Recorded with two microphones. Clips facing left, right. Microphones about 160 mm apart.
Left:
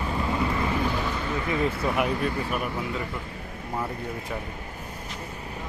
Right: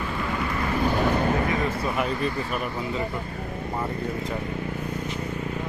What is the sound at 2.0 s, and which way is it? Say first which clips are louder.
Speech: even; 10° left (ahead or behind).